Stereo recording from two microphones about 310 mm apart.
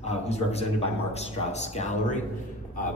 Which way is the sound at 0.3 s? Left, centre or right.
Centre.